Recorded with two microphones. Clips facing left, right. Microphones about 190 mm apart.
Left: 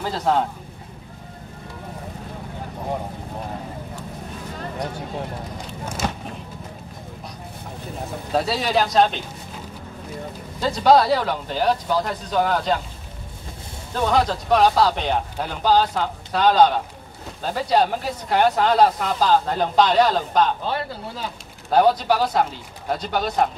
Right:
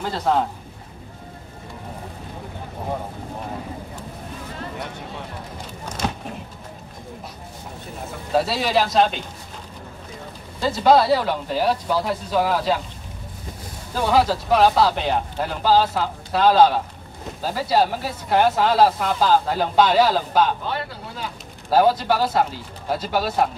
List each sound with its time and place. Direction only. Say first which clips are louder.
0.0 s speech: even; centre (ahead or behind)
8.3 s speech: right 1 dB; centre (ahead or behind)
10.6 s speech: even; centre (ahead or behind)
13.9 s speech: right 1 dB; 5° right (ahead or behind)
21.6 s speech: even; 5° right (ahead or behind)